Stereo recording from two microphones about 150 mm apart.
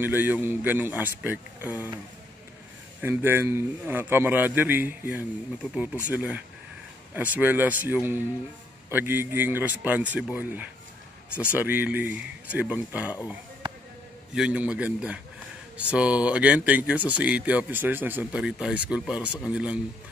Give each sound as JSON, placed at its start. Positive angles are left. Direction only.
{"t": 0.0, "sound": "speech", "side_deg": -15}
{"t": 3.0, "sound": "speech", "side_deg": -15}
{"t": 11.5, "sound": "speech", "side_deg": -10}
{"t": 14.3, "sound": "speech", "side_deg": -5}